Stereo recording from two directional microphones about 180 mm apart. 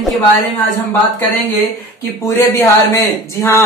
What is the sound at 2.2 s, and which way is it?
Speech, 20° left (ahead or behind).